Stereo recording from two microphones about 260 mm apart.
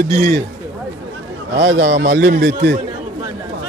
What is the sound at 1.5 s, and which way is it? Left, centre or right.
A man's voice, right.